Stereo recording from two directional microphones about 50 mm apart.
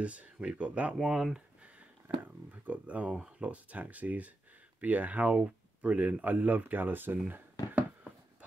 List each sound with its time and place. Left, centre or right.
0.0 s speech: right
1.0 s speech: centre
2.1 s a sound: right
2.5 s speech: right
5.2 s speech: right